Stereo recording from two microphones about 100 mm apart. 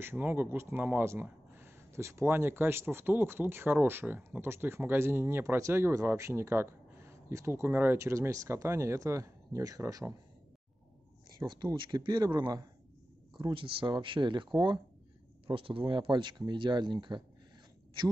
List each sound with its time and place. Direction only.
0.0 s speech: 20° right (ahead or behind)
11.2 s speech: 45° right (ahead or behind)
13.4 s speech: 55° right (ahead or behind)
15.4 s speech: 60° right (ahead or behind)